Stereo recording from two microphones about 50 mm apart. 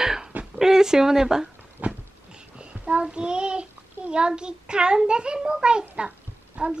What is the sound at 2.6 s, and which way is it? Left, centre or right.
A child's voice, right.